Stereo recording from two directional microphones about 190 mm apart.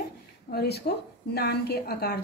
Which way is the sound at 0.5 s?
55° left (ahead or behind).